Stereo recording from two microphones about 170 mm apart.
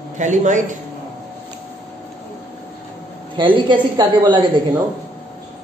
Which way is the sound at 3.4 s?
30° right (ahead or behind).